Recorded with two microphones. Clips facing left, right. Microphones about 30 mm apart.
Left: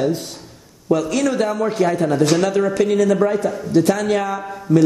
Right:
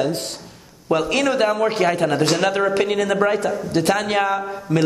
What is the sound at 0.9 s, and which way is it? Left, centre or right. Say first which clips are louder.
A man's voice: left 1 dB; right.